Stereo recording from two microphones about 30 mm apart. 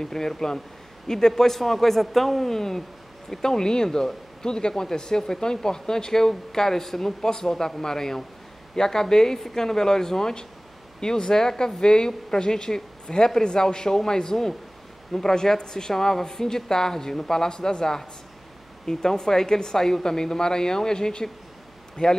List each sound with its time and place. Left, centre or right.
0.0 s speech: centre